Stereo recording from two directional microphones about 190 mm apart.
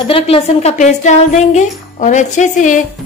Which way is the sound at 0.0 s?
30° left (ahead or behind).